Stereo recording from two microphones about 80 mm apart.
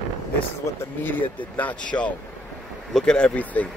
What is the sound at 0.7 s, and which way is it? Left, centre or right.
Speech, left.